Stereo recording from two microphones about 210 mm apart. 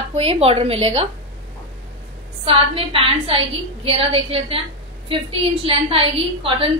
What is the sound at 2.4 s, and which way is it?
A woman's voice, 25° right (ahead or behind).